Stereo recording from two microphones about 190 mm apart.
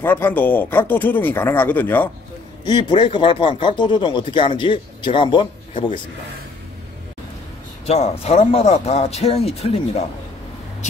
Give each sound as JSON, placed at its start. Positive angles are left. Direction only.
{"t": 0.0, "sound": "speech", "side_deg": 10}
{"t": 2.6, "sound": "speech", "side_deg": 25}
{"t": 7.8, "sound": "speech", "side_deg": 35}